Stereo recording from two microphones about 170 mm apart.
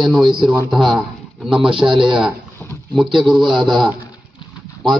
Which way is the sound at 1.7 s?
30° right (ahead or behind).